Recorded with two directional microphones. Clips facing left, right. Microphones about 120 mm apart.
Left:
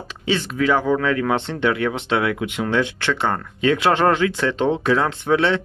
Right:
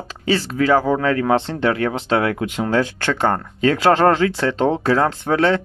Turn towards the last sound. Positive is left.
turn(degrees=-40)  # may be behind; listen again after turning